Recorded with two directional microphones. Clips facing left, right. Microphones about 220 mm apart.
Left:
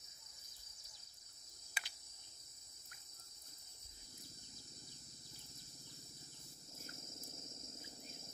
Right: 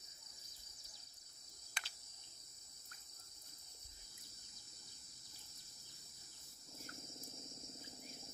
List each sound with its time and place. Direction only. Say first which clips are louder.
1.7 s cricket: left 1 dB; 5° left (ahead or behind)